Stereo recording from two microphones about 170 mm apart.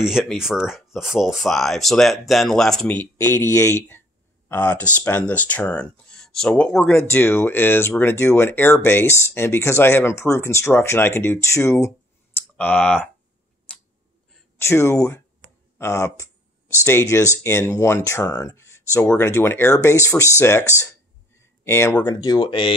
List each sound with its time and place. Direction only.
0.0 s speech: centre (ahead or behind)
14.6 s speech: 15° left (ahead or behind)
21.4 s a sound: 15° left (ahead or behind)
22.0 s speech: 25° left (ahead or behind)